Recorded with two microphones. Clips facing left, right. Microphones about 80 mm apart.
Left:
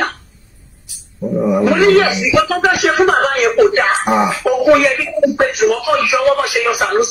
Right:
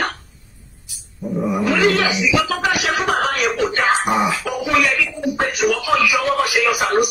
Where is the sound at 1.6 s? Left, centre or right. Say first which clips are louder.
Left 6 dB; left.